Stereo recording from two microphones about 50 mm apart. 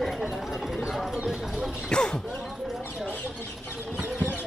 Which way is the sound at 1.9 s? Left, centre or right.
Centre.